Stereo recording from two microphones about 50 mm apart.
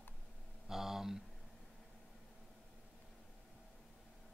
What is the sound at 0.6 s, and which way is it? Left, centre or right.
Speech, centre.